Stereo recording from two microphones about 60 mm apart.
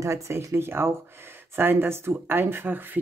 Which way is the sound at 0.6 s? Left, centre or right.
Right.